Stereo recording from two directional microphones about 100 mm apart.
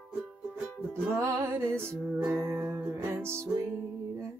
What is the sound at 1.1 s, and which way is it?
Music, 30° right (ahead or behind).